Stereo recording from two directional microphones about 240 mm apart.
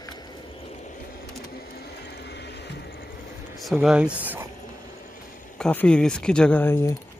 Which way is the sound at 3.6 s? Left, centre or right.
Centre.